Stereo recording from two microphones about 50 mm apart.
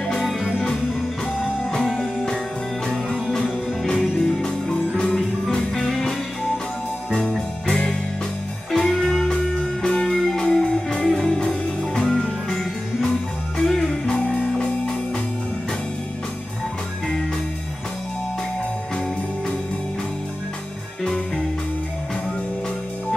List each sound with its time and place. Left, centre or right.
0.0 s music: centre
1.9 s music: centre
7.1 s music: centre
8.7 s music: centre
13.7 s music: centre
14.2 s music: centre
21.0 s music: centre